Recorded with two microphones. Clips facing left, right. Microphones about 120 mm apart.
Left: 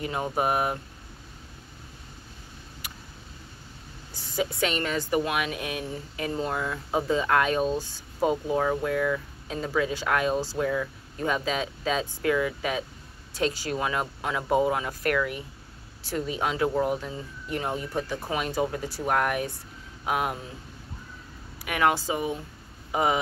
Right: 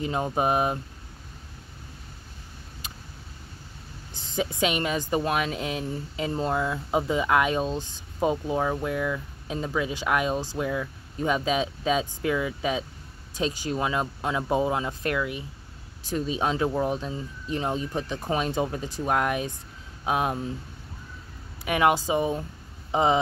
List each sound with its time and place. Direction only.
0.0 s speech: 25° right (ahead or behind)
4.1 s a woman's voice: 20° right (ahead or behind)
5.2 s speech: 35° right (ahead or behind)
21.6 s speech: 20° right (ahead or behind)